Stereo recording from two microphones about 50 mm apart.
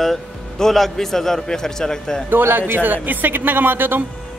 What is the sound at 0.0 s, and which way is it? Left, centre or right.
A man's voice, centre.